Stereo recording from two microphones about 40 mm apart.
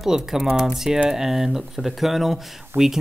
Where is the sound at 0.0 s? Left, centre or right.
Centre.